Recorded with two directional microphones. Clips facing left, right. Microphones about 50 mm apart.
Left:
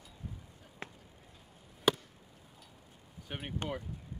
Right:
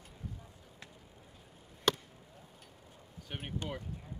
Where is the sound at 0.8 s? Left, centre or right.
Left.